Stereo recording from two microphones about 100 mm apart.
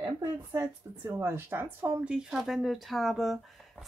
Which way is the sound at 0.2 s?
25° right (ahead or behind).